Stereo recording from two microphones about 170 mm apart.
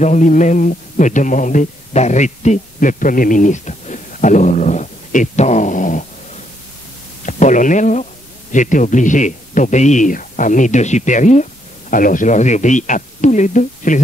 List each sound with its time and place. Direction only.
0.0 s a man's voice: 45° left (ahead or behind)
7.2 s a man's voice: 45° left (ahead or behind)